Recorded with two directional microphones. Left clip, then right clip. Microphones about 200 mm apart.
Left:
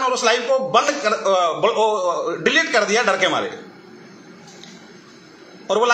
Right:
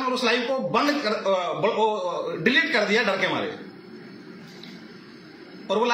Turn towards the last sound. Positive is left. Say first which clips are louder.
# left 5 dB
turn(degrees=0)  # may be behind; listen again after turning